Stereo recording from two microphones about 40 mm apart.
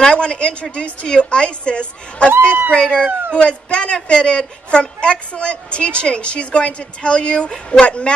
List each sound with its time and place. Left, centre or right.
0.0 s a woman's voice: left
2.4 s speech: right
2.7 s a woman's voice: left